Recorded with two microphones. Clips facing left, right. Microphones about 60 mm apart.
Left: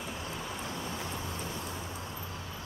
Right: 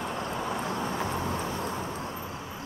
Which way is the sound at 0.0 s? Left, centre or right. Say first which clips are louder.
Right 7 dB; right.